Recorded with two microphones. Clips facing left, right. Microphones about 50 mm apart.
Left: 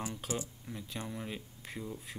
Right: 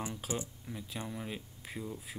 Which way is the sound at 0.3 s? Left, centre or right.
Right.